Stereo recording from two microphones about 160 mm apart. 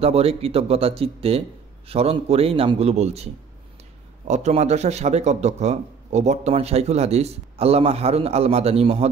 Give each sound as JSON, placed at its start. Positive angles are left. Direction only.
{"t": 0.0, "sound": "speech", "side_deg": -40}
{"t": 4.3, "sound": "speech", "side_deg": -45}